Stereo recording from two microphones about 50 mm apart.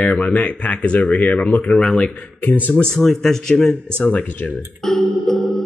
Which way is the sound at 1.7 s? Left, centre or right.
Centre.